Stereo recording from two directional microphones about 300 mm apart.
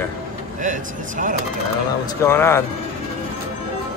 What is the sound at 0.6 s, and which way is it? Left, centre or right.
Speech, right.